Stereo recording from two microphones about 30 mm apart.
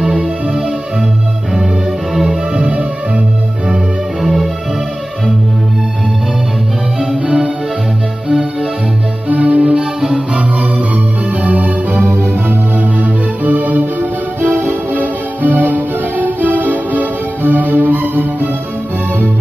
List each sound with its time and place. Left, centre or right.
0.0 s music: right
2.2 s music: right
7.2 s music: right
9.3 s music: right
9.8 s music: right
11.4 s music: right